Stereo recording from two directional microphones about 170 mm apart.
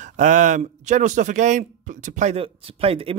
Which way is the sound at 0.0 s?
45° right (ahead or behind).